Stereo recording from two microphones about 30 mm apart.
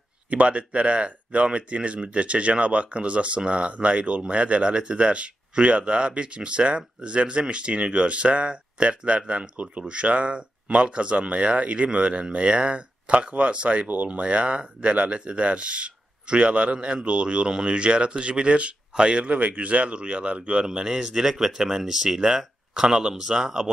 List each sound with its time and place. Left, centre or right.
0.3 s speech: right
19.2 s speech: right
20.6 s speech: right